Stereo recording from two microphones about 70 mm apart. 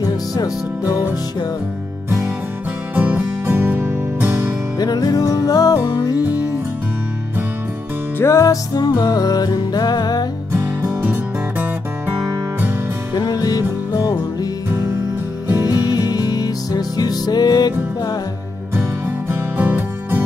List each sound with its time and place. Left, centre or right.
3.0 s music: right
4.7 s music: left
5.9 s music: left
8.2 s music: left
8.7 s music: left
10.5 s music: right
13.1 s music: left
15.7 s music: left
18.8 s music: right